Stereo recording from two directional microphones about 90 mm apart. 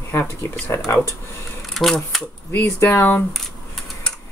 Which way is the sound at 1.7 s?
Centre (ahead or behind).